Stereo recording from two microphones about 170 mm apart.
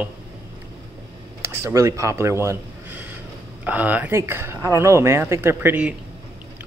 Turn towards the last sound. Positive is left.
turn(degrees=-10)  # may be behind; listen again after turning